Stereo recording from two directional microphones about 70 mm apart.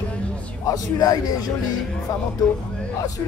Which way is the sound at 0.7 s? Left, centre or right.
Left.